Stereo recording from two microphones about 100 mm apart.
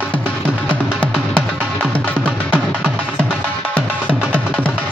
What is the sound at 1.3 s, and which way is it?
Music, 10° left (ahead or behind).